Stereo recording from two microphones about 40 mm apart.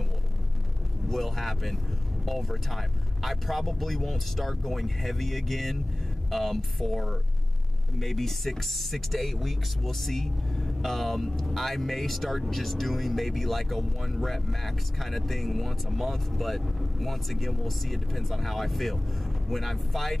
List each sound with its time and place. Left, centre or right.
1.0 s speech: centre